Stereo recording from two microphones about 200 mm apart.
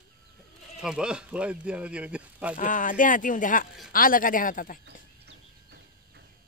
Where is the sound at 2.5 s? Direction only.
40° left (ahead or behind).